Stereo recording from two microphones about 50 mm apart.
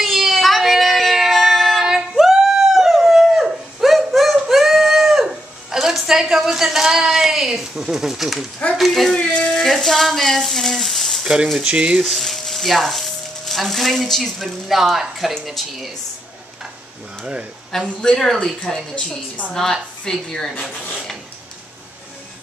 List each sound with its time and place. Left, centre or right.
0.0 s a sound: centre
8.7 s speech: centre
9.1 s a sound: centre
11.6 s speech: right
12.0 s speech: centre
17.2 s speech: centre
18.0 s a woman's voice: centre
18.9 s a woman's voice: left
19.6 s a woman's voice: centre